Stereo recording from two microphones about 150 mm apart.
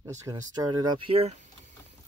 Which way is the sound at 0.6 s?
30° right (ahead or behind).